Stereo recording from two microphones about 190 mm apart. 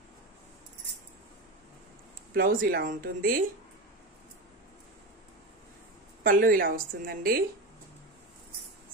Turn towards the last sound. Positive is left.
turn(degrees=-50)  # may be behind; listen again after turning